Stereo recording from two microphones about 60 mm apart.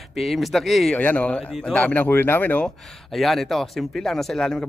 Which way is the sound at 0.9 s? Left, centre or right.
Left.